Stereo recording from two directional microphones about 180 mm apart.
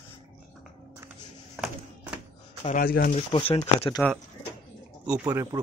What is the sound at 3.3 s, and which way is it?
Speech, 30° left (ahead or behind).